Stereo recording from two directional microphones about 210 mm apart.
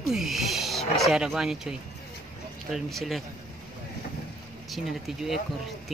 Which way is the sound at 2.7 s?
Centre (ahead or behind).